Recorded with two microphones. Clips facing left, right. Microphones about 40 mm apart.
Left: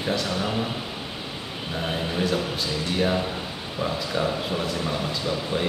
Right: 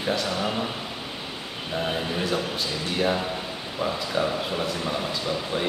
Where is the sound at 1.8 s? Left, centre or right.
Centre.